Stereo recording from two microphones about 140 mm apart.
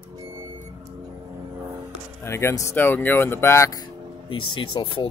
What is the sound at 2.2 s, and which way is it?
Speech, 20° left (ahead or behind).